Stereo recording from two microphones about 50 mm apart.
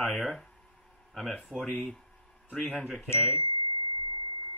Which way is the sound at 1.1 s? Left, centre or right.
Centre.